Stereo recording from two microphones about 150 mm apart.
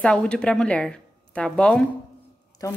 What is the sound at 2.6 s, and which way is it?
Speech, 20° left (ahead or behind).